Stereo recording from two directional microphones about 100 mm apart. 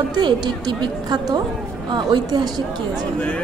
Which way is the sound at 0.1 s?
50° right (ahead or behind).